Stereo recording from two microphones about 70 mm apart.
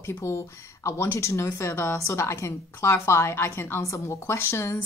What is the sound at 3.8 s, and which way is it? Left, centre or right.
Speech, left.